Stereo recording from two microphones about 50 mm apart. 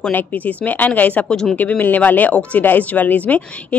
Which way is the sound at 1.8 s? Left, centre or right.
Left.